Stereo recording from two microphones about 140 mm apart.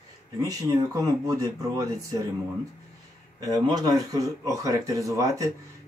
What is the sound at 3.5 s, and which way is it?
Speech, 25° right (ahead or behind).